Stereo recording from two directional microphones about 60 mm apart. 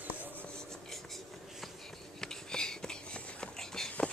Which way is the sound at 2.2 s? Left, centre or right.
Centre.